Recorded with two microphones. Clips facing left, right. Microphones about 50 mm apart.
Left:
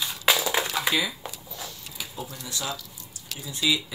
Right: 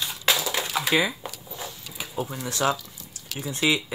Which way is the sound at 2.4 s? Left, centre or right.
Right.